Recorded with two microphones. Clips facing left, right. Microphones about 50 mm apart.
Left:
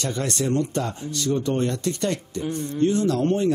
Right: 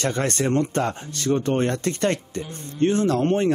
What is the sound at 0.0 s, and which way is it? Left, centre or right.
Speech, right.